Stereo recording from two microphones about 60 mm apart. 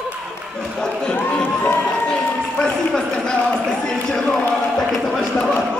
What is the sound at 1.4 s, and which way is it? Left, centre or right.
Music, left.